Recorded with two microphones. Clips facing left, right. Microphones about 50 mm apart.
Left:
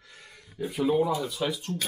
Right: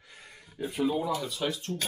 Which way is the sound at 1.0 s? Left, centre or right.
Centre.